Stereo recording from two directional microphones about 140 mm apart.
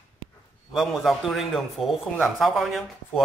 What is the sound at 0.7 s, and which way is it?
Speech, centre (ahead or behind).